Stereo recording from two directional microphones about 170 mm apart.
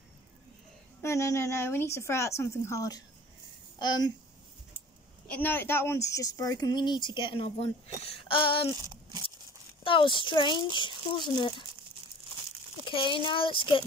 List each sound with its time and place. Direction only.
1.0 s a woman's voice: 15° left (ahead or behind)
5.3 s speech: 10° left (ahead or behind); by 7.7 s 35° left (ahead or behind)
8.3 s a sound: 30° left (ahead or behind)
8.7 s speech: 20° right (ahead or behind)
9.8 s speech: 30° left (ahead or behind)
12.8 s speech: 30° left (ahead or behind)